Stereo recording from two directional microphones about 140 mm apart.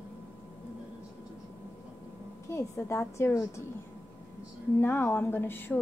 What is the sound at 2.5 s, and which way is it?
A woman's voice, 20° left (ahead or behind).